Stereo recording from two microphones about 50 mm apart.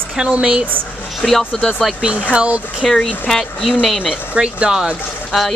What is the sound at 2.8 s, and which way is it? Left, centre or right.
Speech, centre.